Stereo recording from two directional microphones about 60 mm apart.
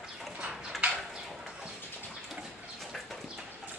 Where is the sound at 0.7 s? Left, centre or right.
Centre.